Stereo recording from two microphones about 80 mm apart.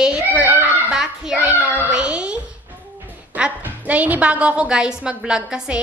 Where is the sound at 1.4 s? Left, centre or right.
Right.